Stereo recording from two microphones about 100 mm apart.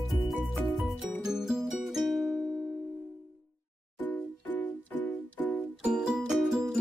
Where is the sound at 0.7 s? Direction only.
Centre (ahead or behind).